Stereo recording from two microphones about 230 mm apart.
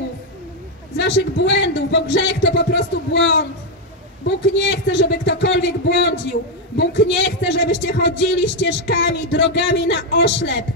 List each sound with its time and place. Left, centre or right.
0.9 s a man's voice: left
4.6 s a man's voice: left